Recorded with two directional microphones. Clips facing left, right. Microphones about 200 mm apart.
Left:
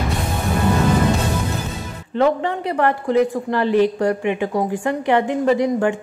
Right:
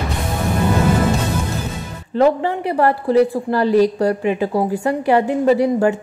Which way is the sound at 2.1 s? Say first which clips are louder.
Right 3 dB; 35° right (ahead or behind).